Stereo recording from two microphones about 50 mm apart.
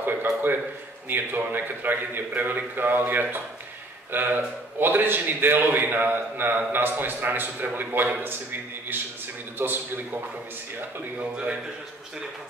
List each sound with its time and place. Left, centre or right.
0.0 s a man's voice: right
11.1 s a man's voice: right